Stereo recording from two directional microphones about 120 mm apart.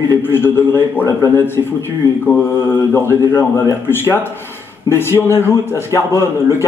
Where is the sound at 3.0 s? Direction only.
20° left (ahead or behind).